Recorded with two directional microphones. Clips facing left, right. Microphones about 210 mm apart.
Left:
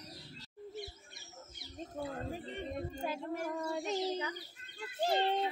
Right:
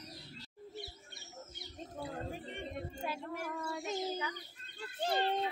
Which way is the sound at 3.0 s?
40° left (ahead or behind).